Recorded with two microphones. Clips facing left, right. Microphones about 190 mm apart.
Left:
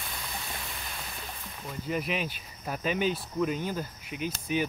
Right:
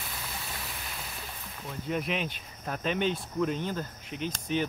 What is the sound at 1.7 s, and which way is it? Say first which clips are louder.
Speech: even; centre (ahead or behind).